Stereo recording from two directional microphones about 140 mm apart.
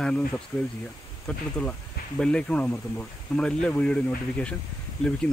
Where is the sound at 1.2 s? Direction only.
5° left (ahead or behind).